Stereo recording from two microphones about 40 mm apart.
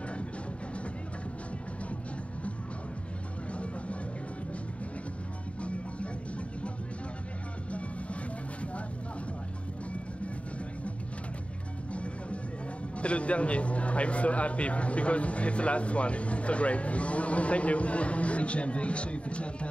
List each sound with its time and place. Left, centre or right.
5.6 s music: left
11.9 s music: left
13.0 s a man's voice: left